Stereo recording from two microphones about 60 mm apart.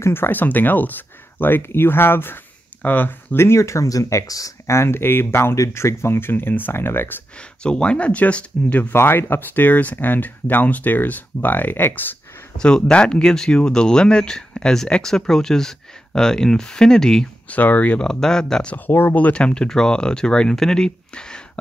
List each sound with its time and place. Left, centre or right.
0.0 s speech: left
3.3 s speech: left
4.6 s speech: left
7.3 s speech: centre
8.9 s speech: left
12.5 s speech: centre
17.5 s speech: left
18.0 s speech: centre
18.9 s speech: left; by 21.4 s centre